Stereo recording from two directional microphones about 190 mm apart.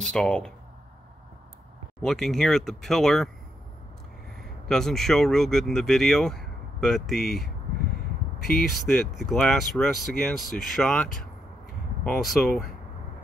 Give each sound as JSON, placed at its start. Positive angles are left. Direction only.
{"t": 0.0, "sound": "speech", "side_deg": 5}
{"t": 2.0, "sound": "speech", "side_deg": 5}
{"t": 4.4, "sound": "speech", "side_deg": 0}
{"t": 8.5, "sound": "speech", "side_deg": 50}
{"t": 8.8, "sound": "speech", "side_deg": 0}